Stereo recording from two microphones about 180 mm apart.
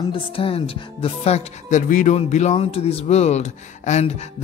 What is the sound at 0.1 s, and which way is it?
Speech, 30° left (ahead or behind).